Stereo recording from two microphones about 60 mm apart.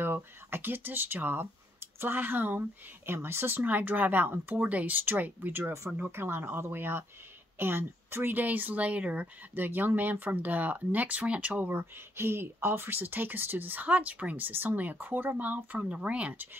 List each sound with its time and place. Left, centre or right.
0.0 s speech: right
11.8 s speech: right